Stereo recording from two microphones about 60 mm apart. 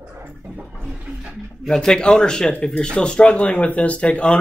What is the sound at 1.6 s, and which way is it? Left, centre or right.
A man's voice, centre.